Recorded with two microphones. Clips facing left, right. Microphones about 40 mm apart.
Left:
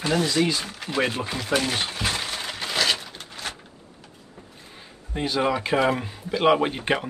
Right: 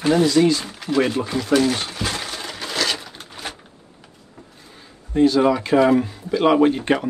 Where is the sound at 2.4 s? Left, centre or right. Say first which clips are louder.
Even; centre.